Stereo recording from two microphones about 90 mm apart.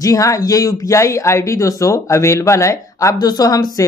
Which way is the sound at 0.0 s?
40° left (ahead or behind).